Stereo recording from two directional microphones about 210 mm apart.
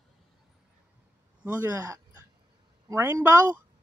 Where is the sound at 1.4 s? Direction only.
10° right (ahead or behind).